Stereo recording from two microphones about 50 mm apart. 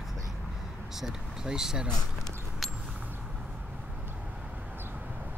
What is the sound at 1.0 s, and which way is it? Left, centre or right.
Speech, centre.